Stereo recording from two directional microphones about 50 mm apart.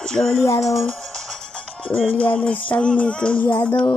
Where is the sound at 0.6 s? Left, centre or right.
Centre.